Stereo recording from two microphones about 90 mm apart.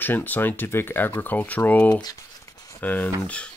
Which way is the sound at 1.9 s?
45° left (ahead or behind).